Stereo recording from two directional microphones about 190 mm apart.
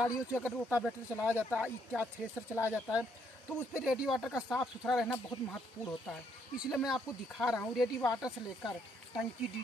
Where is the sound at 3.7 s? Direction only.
5° right (ahead or behind).